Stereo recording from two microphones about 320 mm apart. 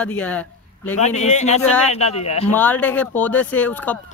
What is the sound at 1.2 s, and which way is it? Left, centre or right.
Speech, left.